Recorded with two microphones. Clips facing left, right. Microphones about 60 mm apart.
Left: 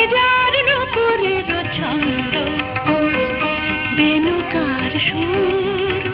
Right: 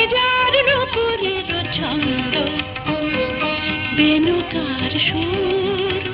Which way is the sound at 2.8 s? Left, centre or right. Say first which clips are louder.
Left 6 dB; left.